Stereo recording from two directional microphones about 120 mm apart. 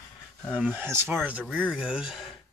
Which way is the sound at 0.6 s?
10° right (ahead or behind).